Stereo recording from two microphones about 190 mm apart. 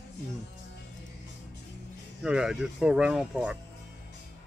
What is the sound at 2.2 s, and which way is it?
Speech, 5° right (ahead or behind).